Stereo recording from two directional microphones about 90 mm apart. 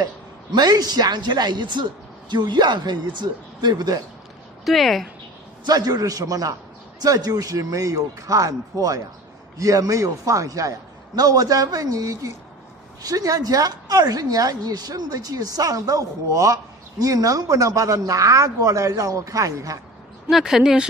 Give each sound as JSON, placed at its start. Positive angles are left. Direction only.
{"t": 0.0, "sound": "a woman's voice", "side_deg": -50}
{"t": 4.6, "sound": "speech", "side_deg": 0}
{"t": 5.7, "sound": "a woman's voice", "side_deg": -45}
{"t": 20.2, "sound": "speech", "side_deg": -5}